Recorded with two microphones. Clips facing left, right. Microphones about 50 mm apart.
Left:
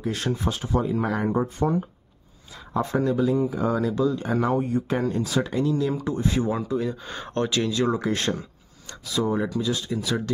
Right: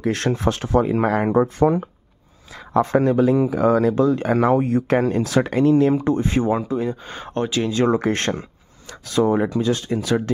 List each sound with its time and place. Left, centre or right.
0.0 s speech: right
1.6 s speech: right
2.7 s speech: right
3.3 s speech: right
5.9 s speech: right
7.1 s speech: centre
7.7 s speech: right